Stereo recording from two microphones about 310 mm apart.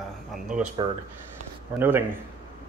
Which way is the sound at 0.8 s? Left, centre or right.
Centre.